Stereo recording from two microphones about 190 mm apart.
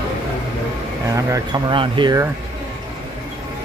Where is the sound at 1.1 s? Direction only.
15° right (ahead or behind).